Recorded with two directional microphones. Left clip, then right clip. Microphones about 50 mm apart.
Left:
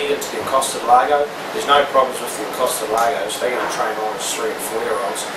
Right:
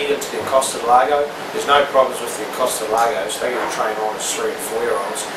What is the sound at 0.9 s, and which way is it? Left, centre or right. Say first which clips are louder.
Speech: left 1 dB; centre.